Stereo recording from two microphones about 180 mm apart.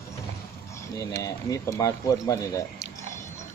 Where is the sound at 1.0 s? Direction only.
20° left (ahead or behind).